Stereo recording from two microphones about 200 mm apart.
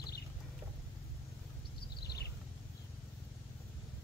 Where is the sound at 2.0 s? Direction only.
50° left (ahead or behind).